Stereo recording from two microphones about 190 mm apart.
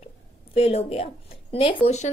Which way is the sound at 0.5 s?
30° left (ahead or behind).